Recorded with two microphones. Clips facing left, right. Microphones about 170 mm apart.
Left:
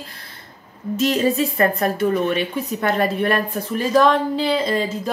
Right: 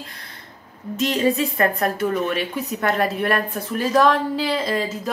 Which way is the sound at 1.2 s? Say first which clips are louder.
Left 1 dB; 30° left (ahead or behind).